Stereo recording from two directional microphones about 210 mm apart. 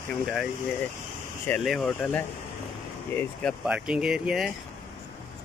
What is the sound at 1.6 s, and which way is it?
Speech, centre (ahead or behind).